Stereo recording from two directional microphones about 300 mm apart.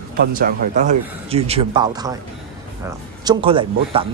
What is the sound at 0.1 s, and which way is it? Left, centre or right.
A man's voice, right.